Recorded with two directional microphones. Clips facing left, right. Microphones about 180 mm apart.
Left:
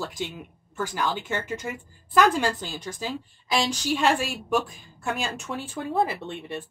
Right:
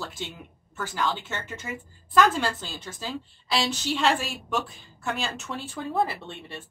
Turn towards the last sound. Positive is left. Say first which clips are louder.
# left 6 dB
turn(degrees=20)  # may be behind; listen again after turning